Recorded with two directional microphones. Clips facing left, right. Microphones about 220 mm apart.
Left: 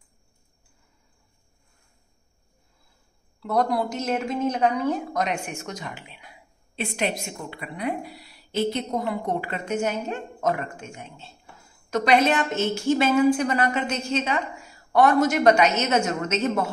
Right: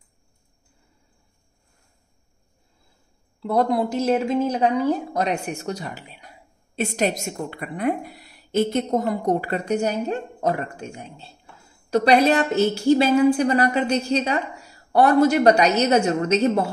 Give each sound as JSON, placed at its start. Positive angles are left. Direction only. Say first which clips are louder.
{"t": 3.3, "sound": "a woman's voice", "louder": "right 3 dB", "side_deg": -25}